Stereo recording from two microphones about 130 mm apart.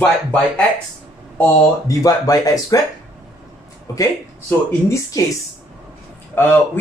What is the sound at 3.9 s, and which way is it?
Speech, 25° left (ahead or behind).